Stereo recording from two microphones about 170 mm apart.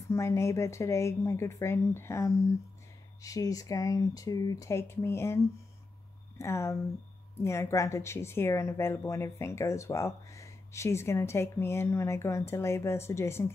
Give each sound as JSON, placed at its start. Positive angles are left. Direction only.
{"t": 0.1, "sound": "speech", "side_deg": 15}